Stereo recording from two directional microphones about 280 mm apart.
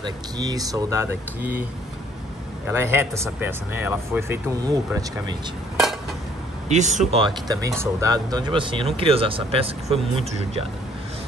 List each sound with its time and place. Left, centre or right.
0.0 s speech: centre
2.6 s speech: centre
6.7 s speech: right